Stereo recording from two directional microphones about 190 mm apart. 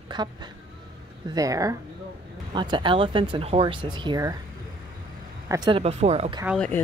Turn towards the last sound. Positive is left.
turn(degrees=0)  # may be behind; listen again after turning